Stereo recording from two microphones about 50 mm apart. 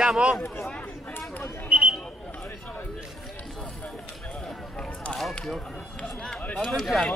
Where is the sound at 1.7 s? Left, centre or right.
Right.